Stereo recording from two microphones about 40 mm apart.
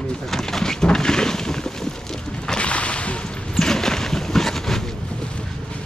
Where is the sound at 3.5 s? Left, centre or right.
Centre.